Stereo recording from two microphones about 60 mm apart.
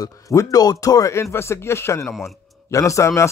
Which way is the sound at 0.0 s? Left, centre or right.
Left.